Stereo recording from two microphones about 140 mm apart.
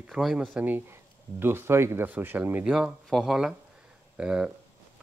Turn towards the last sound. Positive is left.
turn(degrees=-10)  # may be behind; listen again after turning